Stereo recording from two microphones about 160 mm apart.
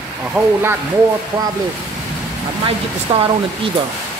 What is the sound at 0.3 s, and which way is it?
Speech, 15° right (ahead or behind).